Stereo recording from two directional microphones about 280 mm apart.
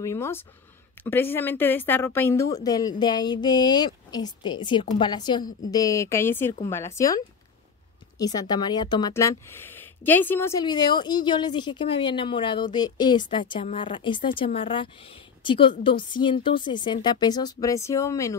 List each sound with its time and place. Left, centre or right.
0.0 s speech: centre